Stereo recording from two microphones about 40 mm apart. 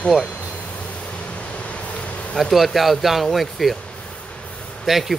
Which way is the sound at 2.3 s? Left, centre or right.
Centre.